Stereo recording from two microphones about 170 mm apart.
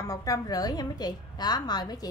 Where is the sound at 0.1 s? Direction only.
20° left (ahead or behind).